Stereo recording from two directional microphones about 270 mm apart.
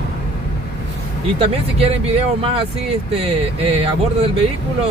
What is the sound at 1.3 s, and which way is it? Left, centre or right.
Speech, right.